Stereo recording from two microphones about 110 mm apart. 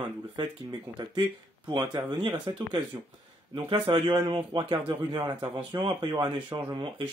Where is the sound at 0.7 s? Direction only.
40° right (ahead or behind).